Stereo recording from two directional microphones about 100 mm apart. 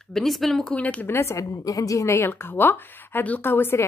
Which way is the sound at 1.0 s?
25° left (ahead or behind).